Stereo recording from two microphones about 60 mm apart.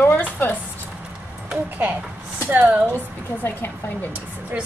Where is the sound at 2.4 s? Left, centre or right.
Right.